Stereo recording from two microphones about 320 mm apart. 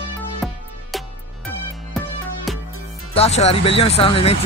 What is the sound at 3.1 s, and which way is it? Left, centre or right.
Speech, centre.